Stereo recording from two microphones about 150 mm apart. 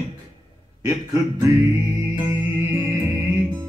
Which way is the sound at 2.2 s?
10° right (ahead or behind).